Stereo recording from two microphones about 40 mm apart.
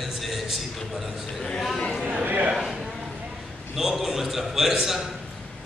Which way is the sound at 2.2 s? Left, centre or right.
Right.